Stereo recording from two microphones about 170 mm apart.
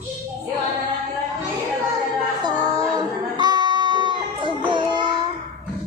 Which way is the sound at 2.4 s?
20° right (ahead or behind).